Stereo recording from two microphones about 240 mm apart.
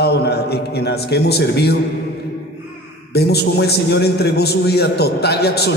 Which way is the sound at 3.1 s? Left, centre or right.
Left.